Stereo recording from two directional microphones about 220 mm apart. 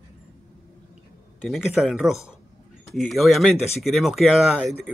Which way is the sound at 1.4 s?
Centre (ahead or behind).